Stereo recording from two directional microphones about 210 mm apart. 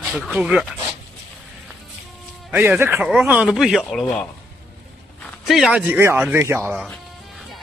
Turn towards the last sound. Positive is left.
turn(degrees=0)  # may be behind; listen again after turning